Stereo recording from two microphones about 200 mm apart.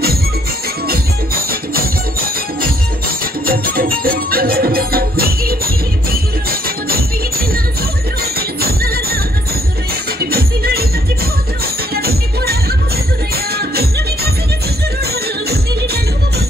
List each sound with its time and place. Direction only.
3.4 s music: 45° right (ahead or behind)
8.2 s music: 50° right (ahead or behind)
10.3 s music: 50° right (ahead or behind)